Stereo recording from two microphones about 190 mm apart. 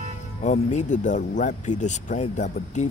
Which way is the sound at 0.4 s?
40° left (ahead or behind).